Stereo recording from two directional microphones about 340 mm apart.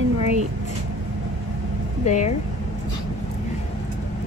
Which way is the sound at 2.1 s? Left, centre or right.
Left.